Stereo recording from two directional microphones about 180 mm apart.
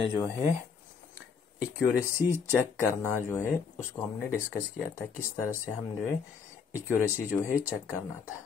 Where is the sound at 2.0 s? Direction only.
15° left (ahead or behind).